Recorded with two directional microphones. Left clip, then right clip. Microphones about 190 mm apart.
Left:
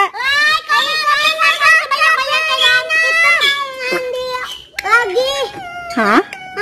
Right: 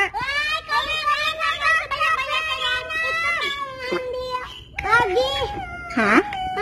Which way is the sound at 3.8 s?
10° left (ahead or behind).